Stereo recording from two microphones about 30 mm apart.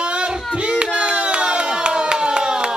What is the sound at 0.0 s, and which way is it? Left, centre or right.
Child singing, right.